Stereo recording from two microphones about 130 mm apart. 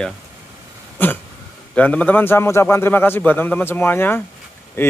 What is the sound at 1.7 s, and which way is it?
A man's voice, 10° left (ahead or behind).